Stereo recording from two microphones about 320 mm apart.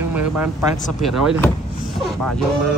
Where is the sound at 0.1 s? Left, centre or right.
Centre.